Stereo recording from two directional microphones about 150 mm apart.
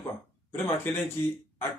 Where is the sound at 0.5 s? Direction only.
15° left (ahead or behind).